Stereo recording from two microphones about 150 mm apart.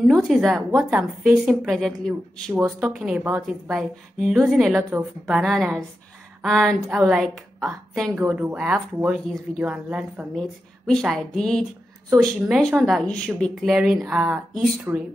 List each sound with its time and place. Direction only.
0.0 s speech: centre (ahead or behind); by 15.0 s 15° right (ahead or behind)